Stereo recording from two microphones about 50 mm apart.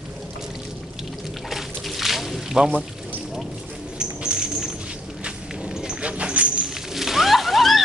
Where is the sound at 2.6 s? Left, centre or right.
Right.